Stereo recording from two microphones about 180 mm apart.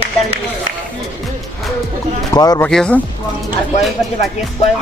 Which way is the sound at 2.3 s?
20° left (ahead or behind).